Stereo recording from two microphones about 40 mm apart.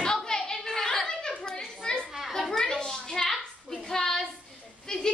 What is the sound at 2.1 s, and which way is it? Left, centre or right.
Children playing, centre.